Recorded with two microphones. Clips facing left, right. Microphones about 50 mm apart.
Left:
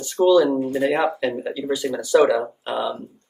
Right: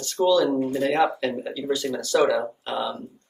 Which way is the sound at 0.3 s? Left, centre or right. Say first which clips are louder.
Left 4 dB; centre.